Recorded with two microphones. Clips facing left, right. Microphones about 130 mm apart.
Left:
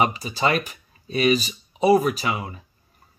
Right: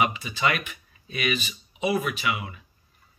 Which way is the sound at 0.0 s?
35° left (ahead or behind).